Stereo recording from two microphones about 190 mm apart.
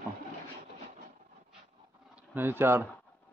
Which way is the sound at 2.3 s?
10° right (ahead or behind).